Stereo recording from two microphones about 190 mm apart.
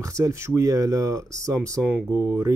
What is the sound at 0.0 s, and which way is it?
Speech, 15° right (ahead or behind).